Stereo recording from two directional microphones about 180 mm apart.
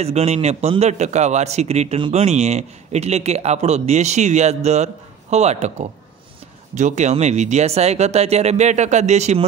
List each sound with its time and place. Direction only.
0.0 s a man's voice: 35° right (ahead or behind)